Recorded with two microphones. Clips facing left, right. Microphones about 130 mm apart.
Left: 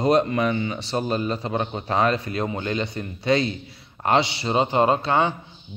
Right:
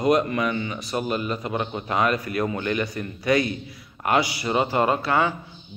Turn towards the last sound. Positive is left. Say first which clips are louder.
# left 2 dB
turn(degrees=25)  # may be behind; listen again after turning